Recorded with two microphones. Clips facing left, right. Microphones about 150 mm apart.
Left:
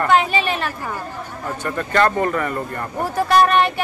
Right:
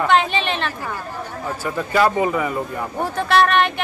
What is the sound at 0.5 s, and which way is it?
Chatter, 5° left (ahead or behind).